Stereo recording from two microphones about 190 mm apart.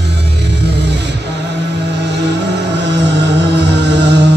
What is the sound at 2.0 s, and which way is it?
Music, 65° right (ahead or behind).